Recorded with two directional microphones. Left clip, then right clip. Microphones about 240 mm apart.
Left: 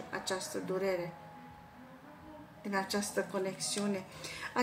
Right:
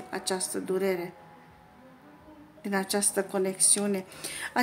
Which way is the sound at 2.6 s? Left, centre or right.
Right.